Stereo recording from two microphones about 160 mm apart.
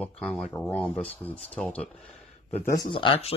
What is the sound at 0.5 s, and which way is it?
Speech, 15° left (ahead or behind).